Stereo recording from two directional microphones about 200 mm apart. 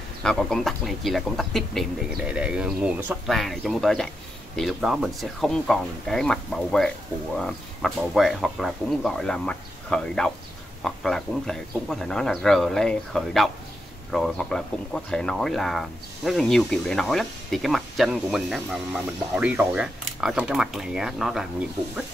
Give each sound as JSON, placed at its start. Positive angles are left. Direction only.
{"t": 0.2, "sound": "speech", "side_deg": 5}